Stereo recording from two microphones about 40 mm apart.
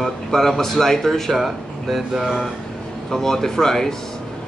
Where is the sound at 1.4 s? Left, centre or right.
Centre.